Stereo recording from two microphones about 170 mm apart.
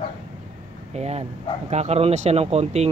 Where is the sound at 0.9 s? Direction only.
40° right (ahead or behind).